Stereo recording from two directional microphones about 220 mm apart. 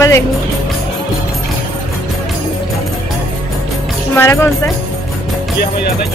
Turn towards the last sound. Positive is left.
turn(degrees=10)  # may be behind; listen again after turning